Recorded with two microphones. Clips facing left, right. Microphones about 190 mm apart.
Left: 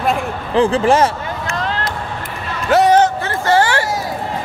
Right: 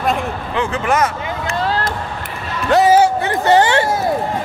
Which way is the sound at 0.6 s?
30° left (ahead or behind).